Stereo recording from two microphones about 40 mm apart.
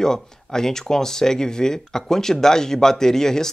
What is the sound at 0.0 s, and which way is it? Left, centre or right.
Speech, centre.